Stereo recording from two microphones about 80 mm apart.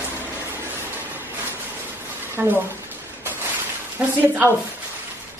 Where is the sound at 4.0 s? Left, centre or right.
Centre.